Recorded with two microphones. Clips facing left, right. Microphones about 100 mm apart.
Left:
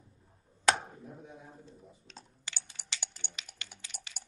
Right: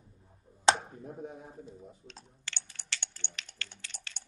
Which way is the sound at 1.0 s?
45° right (ahead or behind).